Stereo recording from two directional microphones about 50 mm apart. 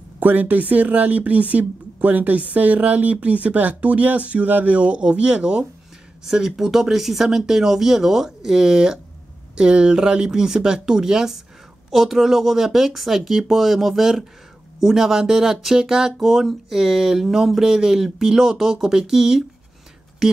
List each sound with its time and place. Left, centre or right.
0.2 s speech: right; by 19.4 s centre